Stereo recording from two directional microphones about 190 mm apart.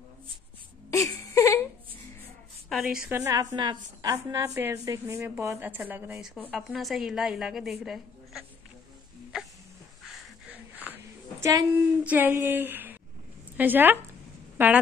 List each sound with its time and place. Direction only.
0.8 s wail: 15° left (ahead or behind)
2.7 s a woman's voice: centre (ahead or behind)
3.1 s a woman's voice: 15° right (ahead or behind)
6.3 s a woman's voice: 5° left (ahead or behind)
7.8 s a sound: centre (ahead or behind)
10.0 s wheeze: 5° right (ahead or behind)
11.0 s a woman's voice: 15° right (ahead or behind)